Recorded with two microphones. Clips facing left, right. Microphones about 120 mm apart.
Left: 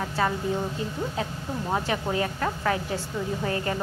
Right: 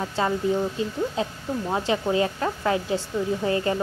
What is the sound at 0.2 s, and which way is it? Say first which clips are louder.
A woman's voice: right 4 dB; 25° right (ahead or behind).